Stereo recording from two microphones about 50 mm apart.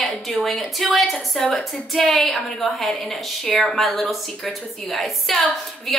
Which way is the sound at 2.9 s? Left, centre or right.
Centre.